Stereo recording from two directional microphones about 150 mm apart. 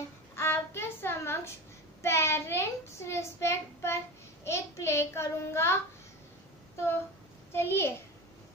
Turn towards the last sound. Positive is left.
turn(degrees=15)  # may be behind; listen again after turning